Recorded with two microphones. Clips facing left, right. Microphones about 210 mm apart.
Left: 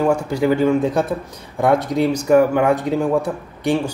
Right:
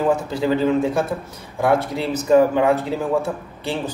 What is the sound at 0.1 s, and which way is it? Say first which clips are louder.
A man's voice: left 2 dB; 10° left (ahead or behind).